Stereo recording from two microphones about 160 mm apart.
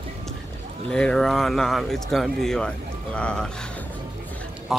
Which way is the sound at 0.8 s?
5° left (ahead or behind).